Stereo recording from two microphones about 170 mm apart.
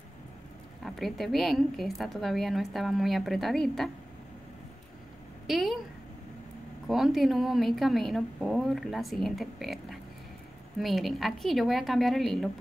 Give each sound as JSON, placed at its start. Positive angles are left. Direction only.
{"t": 0.8, "sound": "a woman's voice", "side_deg": 0}
{"t": 5.5, "sound": "a woman's voice", "side_deg": 0}
{"t": 6.9, "sound": "a woman's voice", "side_deg": 0}